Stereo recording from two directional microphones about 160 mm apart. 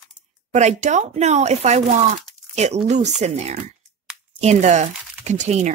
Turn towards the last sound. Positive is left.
turn(degrees=-45)  # may be behind; listen again after turning